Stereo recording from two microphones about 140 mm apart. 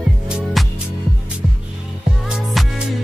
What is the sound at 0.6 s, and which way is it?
Music, centre (ahead or behind).